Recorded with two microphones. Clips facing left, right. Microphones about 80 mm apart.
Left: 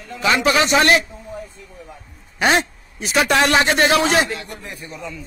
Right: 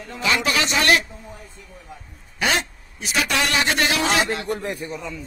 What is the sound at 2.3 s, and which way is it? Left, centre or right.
A man's voice, left.